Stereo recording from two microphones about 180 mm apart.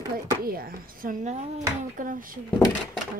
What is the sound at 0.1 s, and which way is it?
Speech, 55° right (ahead or behind).